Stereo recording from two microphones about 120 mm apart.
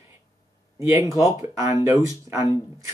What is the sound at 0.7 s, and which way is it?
Speech, 25° right (ahead or behind).